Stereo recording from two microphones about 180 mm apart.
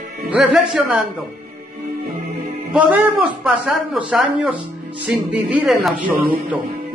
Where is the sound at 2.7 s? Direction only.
10° right (ahead or behind).